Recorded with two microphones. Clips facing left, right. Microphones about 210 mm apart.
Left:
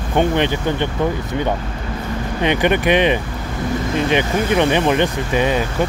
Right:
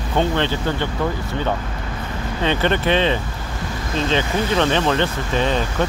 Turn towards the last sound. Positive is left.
turn(degrees=10)  # may be behind; listen again after turning